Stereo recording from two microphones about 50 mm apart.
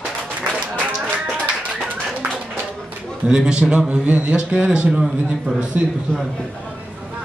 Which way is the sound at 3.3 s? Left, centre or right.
Centre.